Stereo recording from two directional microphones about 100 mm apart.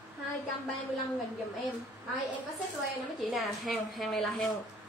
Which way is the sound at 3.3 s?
Centre (ahead or behind).